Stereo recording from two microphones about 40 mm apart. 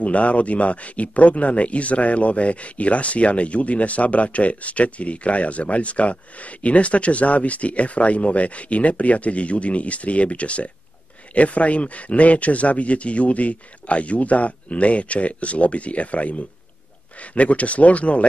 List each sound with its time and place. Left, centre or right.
0.0 s speech: left